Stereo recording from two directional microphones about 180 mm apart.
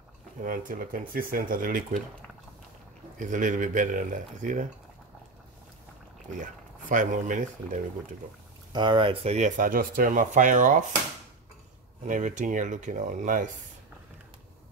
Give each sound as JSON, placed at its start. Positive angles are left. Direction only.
{"t": 0.4, "sound": "speech", "side_deg": -50}
{"t": 3.2, "sound": "speech", "side_deg": -45}
{"t": 6.9, "sound": "speech", "side_deg": -45}
{"t": 8.7, "sound": "speech", "side_deg": -25}
{"t": 12.1, "sound": "speech", "side_deg": -45}